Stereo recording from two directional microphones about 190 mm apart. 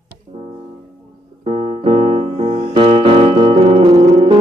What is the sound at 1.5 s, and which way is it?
Piano, 35° right (ahead or behind).